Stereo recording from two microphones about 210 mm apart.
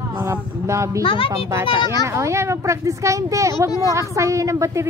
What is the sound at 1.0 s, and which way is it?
Speech, 25° left (ahead or behind).